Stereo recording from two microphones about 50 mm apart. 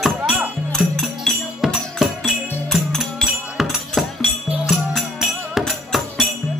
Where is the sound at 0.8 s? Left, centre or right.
Right.